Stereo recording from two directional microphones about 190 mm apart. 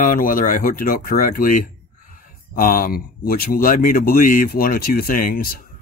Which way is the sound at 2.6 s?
45° left (ahead or behind).